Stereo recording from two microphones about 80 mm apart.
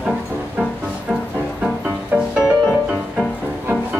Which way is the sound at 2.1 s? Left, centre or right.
Centre.